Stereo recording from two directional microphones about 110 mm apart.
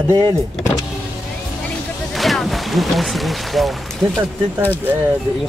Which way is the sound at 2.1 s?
Centre (ahead or behind).